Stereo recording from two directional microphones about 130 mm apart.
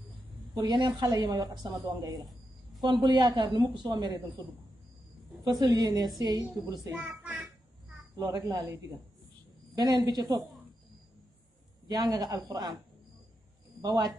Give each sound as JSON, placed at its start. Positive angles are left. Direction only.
{"t": 0.6, "sound": "a woman's voice", "side_deg": -35}
{"t": 5.4, "sound": "a woman's voice", "side_deg": -35}
{"t": 7.1, "sound": "child singing", "side_deg": -10}
{"t": 8.1, "sound": "a woman's voice", "side_deg": -30}
{"t": 9.8, "sound": "a woman's voice", "side_deg": -30}
{"t": 11.9, "sound": "a woman's voice", "side_deg": -30}
{"t": 13.7, "sound": "speech", "side_deg": -30}